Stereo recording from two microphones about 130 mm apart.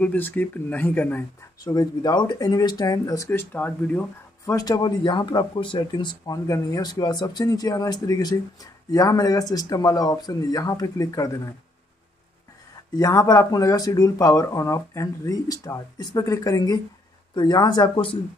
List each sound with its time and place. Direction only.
0.0 s speech: 15° left (ahead or behind)
1.6 s speech: 30° left (ahead or behind)
3.3 s speech: 15° left (ahead or behind)
4.5 s speech: 25° left (ahead or behind)
12.9 s speech: 25° left (ahead or behind)